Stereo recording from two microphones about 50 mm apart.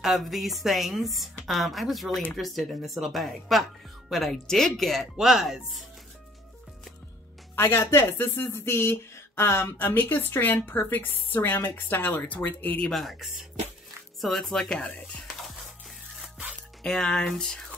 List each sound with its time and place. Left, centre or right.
0.0 s a woman's voice: centre
5.1 s speech: centre
7.5 s speech: left
12.9 s a woman's voice: centre
14.7 s speech: left
16.8 s speech: centre